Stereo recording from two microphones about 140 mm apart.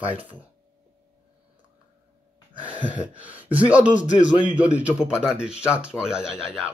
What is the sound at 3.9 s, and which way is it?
Speech, 60° left (ahead or behind).